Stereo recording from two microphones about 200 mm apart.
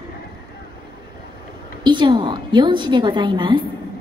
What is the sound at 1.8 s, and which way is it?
A woman's voice, 25° right (ahead or behind).